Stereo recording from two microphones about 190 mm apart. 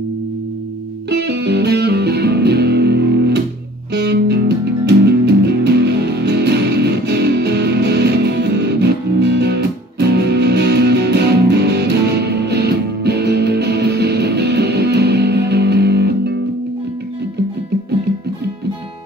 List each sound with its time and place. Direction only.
1.2 s music: 60° right (ahead or behind)